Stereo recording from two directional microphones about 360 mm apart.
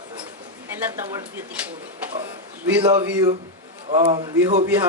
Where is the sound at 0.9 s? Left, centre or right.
Centre.